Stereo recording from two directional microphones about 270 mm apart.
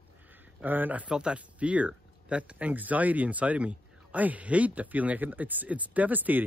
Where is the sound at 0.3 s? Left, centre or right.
Centre.